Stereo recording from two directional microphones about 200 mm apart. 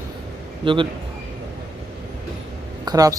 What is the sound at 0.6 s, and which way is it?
Speech, 25° right (ahead or behind).